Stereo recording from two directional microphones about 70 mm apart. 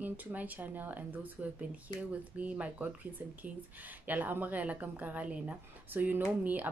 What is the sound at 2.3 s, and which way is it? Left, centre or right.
Speech, centre.